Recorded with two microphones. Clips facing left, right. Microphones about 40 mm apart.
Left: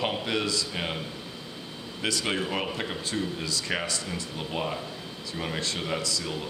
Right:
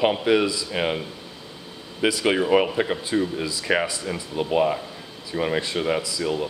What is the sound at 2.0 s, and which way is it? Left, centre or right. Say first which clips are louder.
Speech: right 8 dB; centre.